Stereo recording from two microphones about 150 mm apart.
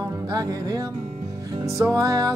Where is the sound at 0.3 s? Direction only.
25° right (ahead or behind).